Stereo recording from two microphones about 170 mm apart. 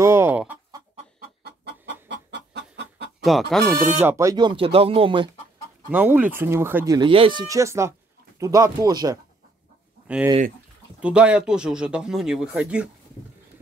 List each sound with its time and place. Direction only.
0.0 s chicken: 15° right (ahead or behind)
1.4 s chicken: 80° right
3.3 s speech: centre (ahead or behind)
4.0 s speech: 15° right (ahead or behind); by 5.3 s 30° right (ahead or behind)
5.9 s speech: 10° right (ahead or behind)
7.0 s speech: 30° right (ahead or behind)
10.0 s speech: 5° right (ahead or behind)